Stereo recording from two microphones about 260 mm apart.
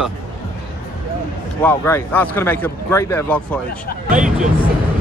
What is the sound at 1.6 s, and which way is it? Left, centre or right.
Speech, centre.